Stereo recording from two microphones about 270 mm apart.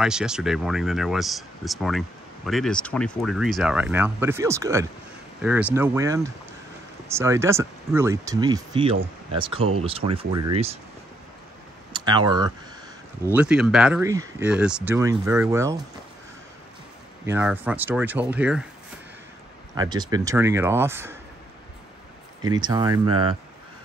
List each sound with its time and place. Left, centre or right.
0.0 s speech: centre; by 10.8 s right
11.9 s speech: centre
13.3 s speech: centre
17.3 s speech: centre
19.7 s speech: centre
22.4 s speech: centre